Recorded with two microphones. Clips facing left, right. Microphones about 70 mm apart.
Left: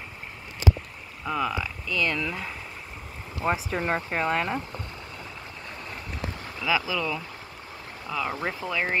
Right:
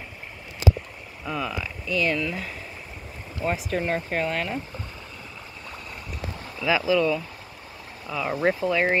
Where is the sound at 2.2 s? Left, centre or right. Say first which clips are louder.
Right 2 dB; centre.